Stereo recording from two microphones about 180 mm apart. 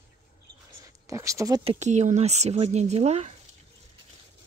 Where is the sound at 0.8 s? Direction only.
15° right (ahead or behind).